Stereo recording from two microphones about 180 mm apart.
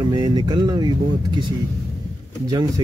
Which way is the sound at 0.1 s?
20° right (ahead or behind).